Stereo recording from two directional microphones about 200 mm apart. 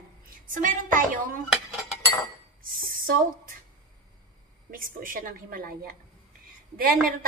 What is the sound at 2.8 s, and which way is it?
Speech, 45° right (ahead or behind).